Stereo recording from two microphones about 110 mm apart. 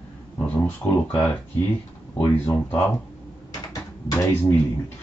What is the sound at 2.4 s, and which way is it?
Speech, 15° left (ahead or behind).